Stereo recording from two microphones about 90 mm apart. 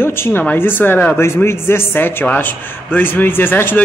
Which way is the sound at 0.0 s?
25° left (ahead or behind).